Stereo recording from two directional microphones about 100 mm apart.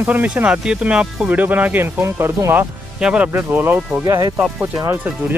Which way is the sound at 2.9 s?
10° right (ahead or behind).